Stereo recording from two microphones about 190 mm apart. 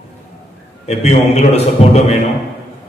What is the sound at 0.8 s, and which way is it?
A man's voice, 35° left (ahead or behind).